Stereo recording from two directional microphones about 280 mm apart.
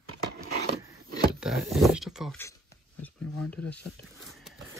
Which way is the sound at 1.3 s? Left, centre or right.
Centre.